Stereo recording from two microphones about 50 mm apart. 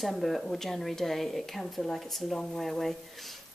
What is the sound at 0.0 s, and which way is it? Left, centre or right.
A woman's voice, centre.